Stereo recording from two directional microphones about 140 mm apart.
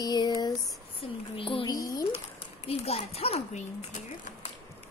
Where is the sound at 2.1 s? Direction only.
45° left (ahead or behind).